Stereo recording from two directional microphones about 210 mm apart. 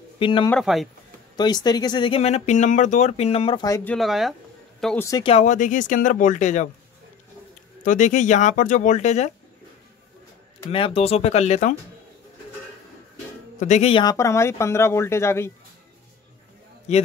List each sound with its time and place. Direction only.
0.2 s speech: 25° left (ahead or behind)
0.5 s speech: centre (ahead or behind)
1.3 s speech: 20° left (ahead or behind)
3.9 s speech: centre (ahead or behind)
5.0 s speech: 20° left (ahead or behind)
7.8 s speech: 35° left (ahead or behind)
10.7 s speech: 25° left (ahead or behind)
13.6 s speech: 35° left (ahead or behind); by 15.5 s 10° left (ahead or behind)
16.9 s speech: 30° left (ahead or behind)